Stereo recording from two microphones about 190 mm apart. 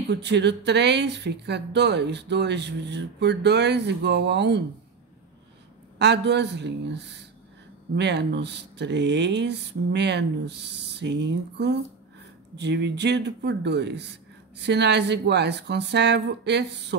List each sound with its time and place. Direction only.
0.1 s speech: 65° right (ahead or behind)
5.9 s speech: 65° right (ahead or behind)